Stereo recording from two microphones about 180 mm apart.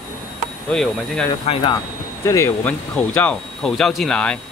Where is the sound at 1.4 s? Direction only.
30° left (ahead or behind).